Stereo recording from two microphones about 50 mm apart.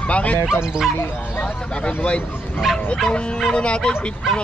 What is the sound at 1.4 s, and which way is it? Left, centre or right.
Speech, left.